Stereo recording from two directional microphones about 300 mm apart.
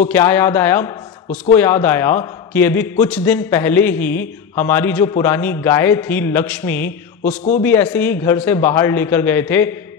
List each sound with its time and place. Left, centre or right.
0.1 s a man's voice: centre